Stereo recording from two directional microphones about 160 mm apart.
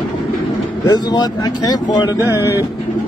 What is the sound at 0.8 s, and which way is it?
Speech, 25° left (ahead or behind).